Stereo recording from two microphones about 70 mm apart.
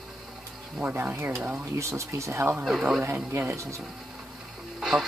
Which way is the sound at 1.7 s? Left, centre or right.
Right.